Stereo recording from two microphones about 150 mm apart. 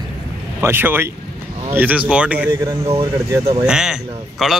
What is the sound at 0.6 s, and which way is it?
Speech, 15° right (ahead or behind).